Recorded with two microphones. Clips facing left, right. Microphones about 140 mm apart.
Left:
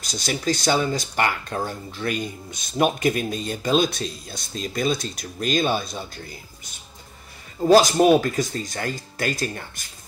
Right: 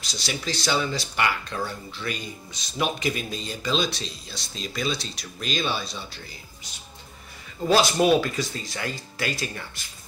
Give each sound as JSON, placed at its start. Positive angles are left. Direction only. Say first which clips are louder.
{"t": 0.0, "sound": "speech", "louder": "left 6 dB", "side_deg": 45}